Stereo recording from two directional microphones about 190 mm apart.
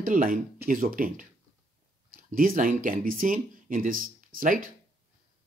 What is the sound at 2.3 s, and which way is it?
Speech, 45° right (ahead or behind).